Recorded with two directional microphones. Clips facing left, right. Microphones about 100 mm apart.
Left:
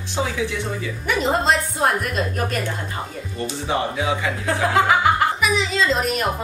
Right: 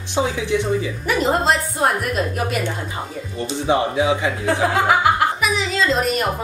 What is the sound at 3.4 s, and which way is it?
Speech, 20° right (ahead or behind).